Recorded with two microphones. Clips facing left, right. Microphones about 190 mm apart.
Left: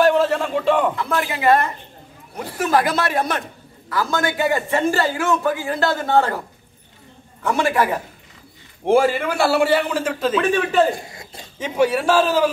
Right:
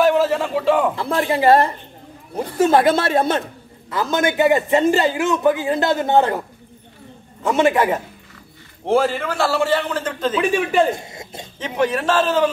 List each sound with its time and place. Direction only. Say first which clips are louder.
0.0 s a sound: even; centre (ahead or behind)
0.9 s a man's voice: right 3 dB; 30° right (ahead or behind)
7.4 s a man's voice: right 3 dB; 20° right (ahead or behind)
8.8 s a man's voice: left 2 dB; 10° left (ahead or behind)
10.3 s speech: right 1 dB; 10° right (ahead or behind)
10.9 s speech: right 1 dB; 25° right (ahead or behind)
11.6 s a man's voice: left 2 dB; 10° left (ahead or behind)